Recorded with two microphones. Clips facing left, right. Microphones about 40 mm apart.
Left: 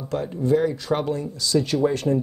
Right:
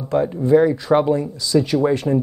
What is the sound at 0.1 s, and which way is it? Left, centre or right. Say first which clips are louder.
Speech: right 6 dB; right.